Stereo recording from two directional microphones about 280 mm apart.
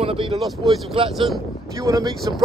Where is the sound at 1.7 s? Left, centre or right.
Centre.